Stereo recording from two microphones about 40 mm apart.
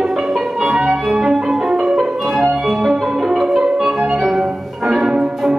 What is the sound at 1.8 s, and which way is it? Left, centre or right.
Music, centre.